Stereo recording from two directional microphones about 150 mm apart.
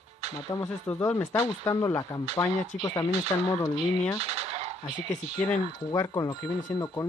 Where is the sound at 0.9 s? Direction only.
15° left (ahead or behind).